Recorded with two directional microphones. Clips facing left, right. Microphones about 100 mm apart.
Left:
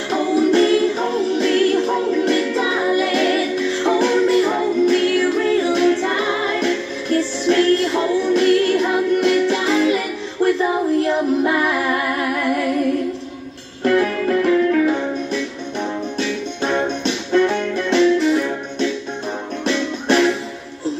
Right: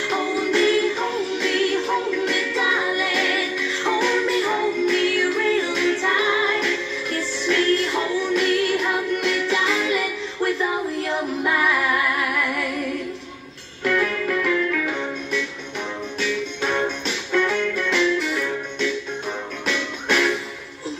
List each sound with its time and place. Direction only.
0.1 s music: 35° left (ahead or behind)
11.4 s music: 40° left (ahead or behind)
13.8 s music: 40° left (ahead or behind)